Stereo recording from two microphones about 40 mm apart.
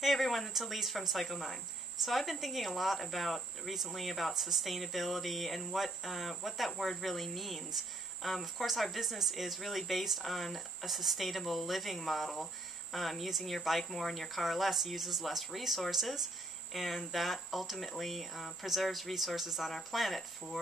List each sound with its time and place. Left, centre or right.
0.0 s cricket: centre
0.5 s cricket: centre
4.3 s cricket: centre